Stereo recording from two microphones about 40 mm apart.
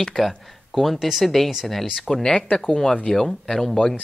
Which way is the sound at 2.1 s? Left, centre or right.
Centre.